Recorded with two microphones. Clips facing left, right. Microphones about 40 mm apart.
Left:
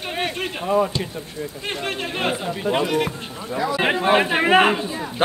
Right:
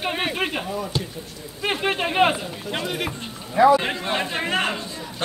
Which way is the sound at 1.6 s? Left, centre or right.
Centre.